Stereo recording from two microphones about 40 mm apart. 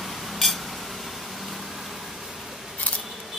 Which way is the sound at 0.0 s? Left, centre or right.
Centre.